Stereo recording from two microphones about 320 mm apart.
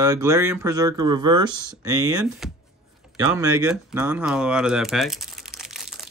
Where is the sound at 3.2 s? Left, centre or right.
Centre.